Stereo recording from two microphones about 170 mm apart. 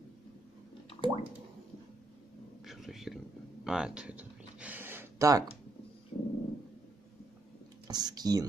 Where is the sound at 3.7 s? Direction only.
5° right (ahead or behind).